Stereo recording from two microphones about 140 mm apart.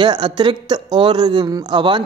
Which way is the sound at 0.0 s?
35° right (ahead or behind).